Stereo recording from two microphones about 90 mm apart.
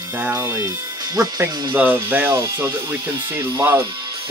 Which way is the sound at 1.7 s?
20° right (ahead or behind).